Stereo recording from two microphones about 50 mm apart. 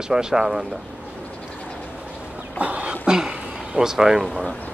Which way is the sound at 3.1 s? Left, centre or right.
Centre.